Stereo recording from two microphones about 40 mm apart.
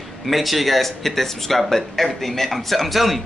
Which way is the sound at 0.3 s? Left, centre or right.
Centre.